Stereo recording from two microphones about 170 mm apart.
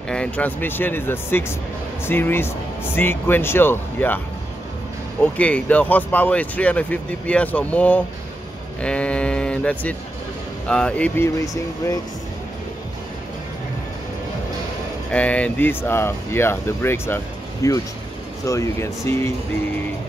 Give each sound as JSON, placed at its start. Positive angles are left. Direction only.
{"t": 0.1, "sound": "speech", "side_deg": 5}
{"t": 5.2, "sound": "speech", "side_deg": 10}
{"t": 15.0, "sound": "speech", "side_deg": 10}